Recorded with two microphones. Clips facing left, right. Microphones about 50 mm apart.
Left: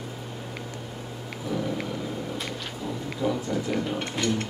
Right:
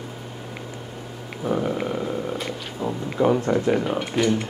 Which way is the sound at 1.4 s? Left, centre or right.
Right.